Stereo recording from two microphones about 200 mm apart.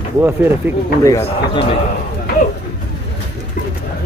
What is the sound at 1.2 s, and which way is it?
Speech, 30° left (ahead or behind).